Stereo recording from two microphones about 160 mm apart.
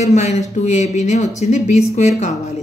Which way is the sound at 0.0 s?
45° left (ahead or behind).